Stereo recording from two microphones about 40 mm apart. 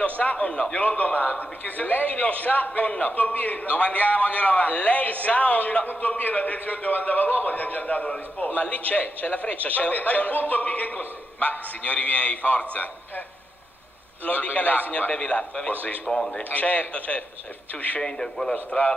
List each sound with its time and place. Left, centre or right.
0.2 s a man's voice: left
0.5 s a man's voice: left
0.7 s a man's voice: left
14.2 s a man's voice: left
16.1 s a man's voice: centre
16.4 s a man's voice: left
18.0 s a man's voice: centre